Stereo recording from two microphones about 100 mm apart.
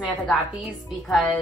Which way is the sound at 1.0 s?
Centre (ahead or behind).